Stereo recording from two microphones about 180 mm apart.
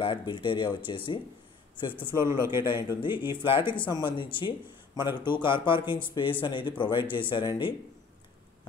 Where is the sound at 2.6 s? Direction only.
25° left (ahead or behind).